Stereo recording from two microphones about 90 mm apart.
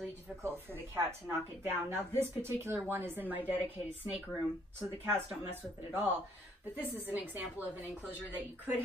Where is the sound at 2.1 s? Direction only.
25° right (ahead or behind).